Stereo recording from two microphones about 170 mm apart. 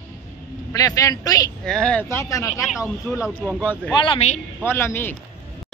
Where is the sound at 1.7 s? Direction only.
5° left (ahead or behind).